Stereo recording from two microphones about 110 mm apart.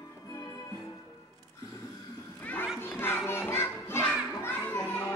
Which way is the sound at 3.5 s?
20° left (ahead or behind).